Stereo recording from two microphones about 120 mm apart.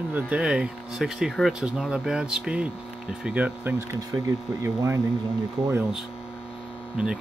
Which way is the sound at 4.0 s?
30° right (ahead or behind).